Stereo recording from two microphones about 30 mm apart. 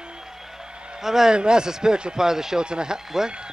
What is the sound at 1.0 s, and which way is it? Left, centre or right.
Speech, centre.